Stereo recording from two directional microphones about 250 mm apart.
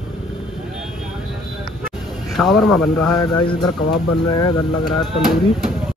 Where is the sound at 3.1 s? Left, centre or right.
Centre.